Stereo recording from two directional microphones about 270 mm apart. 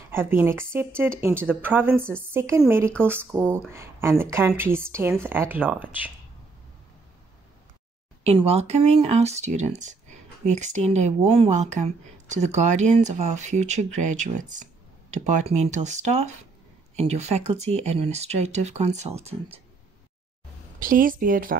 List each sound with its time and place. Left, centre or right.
0.1 s speech: centre
8.2 s speech: right
20.8 s speech: right